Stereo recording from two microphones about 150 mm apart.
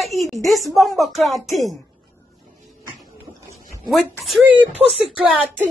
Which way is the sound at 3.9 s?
Centre (ahead or behind).